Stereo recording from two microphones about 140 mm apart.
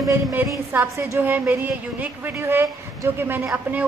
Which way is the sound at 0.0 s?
15° right (ahead or behind).